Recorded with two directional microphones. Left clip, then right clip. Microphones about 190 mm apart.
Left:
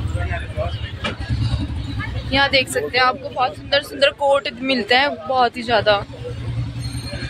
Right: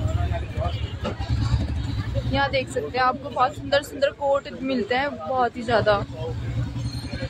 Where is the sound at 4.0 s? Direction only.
Centre (ahead or behind).